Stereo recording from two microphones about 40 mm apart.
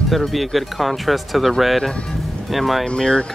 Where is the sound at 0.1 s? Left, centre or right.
Centre.